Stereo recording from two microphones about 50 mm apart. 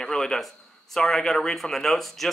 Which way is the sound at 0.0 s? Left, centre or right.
Centre.